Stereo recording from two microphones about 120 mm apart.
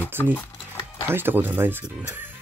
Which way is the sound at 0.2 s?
15° left (ahead or behind).